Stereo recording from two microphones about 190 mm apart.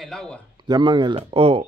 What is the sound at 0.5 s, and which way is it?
Speech, 20° right (ahead or behind).